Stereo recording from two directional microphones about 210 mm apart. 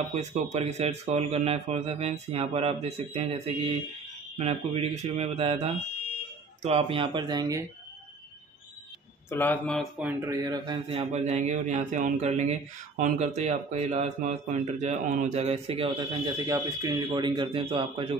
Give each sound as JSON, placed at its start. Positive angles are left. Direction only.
{"t": 0.1, "sound": "speech", "side_deg": -35}
{"t": 9.3, "sound": "a man's voice", "side_deg": 10}
{"t": 11.0, "sound": "speech", "side_deg": -30}